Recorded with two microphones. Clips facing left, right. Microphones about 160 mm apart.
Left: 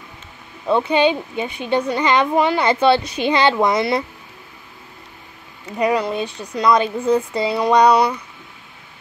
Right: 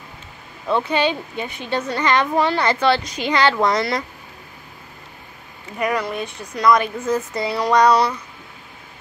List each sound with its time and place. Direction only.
0.7 s a woman's voice: 15° left (ahead or behind)
5.8 s speech: 30° left (ahead or behind)
7.7 s a woman's voice: 10° left (ahead or behind)